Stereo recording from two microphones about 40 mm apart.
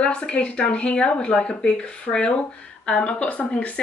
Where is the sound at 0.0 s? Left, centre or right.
Left.